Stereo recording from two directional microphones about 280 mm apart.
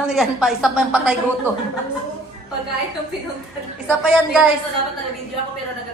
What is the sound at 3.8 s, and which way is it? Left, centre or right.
Speech, centre.